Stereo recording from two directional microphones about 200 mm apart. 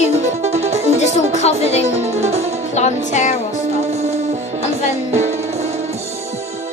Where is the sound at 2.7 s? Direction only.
35° left (ahead or behind).